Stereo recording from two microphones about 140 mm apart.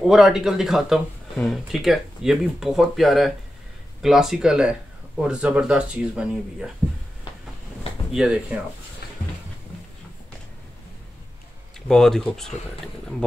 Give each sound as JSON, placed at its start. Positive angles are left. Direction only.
{"t": 0.0, "sound": "speech", "side_deg": 0}
{"t": 8.1, "sound": "speech", "side_deg": -5}
{"t": 11.9, "sound": "speech", "side_deg": 5}